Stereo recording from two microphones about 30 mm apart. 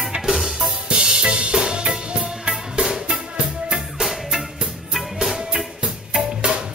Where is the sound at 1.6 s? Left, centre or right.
Right.